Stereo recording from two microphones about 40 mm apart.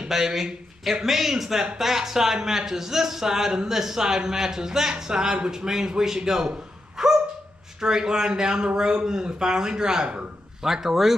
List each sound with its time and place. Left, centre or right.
0.1 s speech: centre